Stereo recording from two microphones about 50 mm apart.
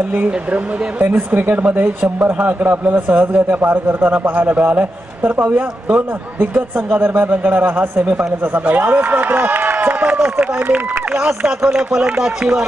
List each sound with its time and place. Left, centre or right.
0.1 s speech: right
1.0 s a man's voice: right
3.2 s a man's voice: right
8.0 s speech: right
8.6 s a man's voice: right
11.2 s speech: centre